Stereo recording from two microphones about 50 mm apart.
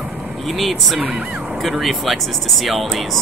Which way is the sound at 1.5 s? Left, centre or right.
Centre.